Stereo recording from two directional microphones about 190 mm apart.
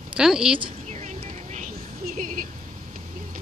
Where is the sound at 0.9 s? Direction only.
40° right (ahead or behind).